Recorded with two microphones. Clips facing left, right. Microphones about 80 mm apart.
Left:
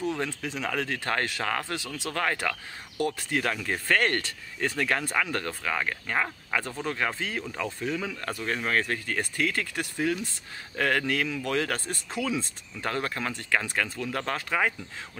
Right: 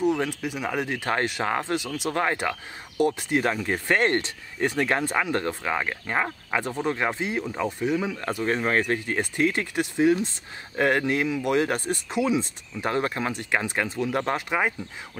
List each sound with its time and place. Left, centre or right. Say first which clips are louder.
0.0 s speech: right 6 dB; centre